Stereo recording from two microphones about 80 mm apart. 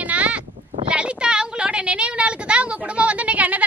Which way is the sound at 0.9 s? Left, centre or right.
Centre.